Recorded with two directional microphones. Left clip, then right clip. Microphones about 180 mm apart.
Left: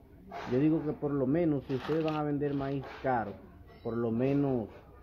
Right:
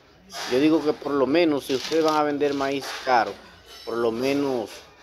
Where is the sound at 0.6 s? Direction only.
25° right (ahead or behind).